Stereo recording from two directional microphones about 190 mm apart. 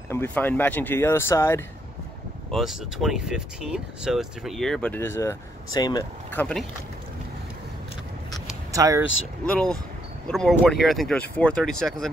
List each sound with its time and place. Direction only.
0.1 s speech: 10° left (ahead or behind)
2.5 s speech: centre (ahead or behind); by 6.0 s 20° left (ahead or behind)
6.3 s speech: 5° left (ahead or behind)
8.7 s speech: 15° right (ahead or behind)
9.5 s speech: 5° left (ahead or behind)